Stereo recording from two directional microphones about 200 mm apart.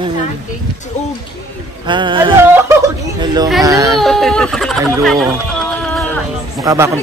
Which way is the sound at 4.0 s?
Centre (ahead or behind).